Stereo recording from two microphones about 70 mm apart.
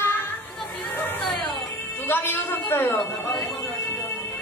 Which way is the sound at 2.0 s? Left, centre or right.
Left.